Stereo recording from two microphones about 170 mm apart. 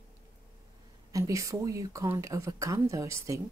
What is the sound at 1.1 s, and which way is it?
Speech, 20° right (ahead or behind).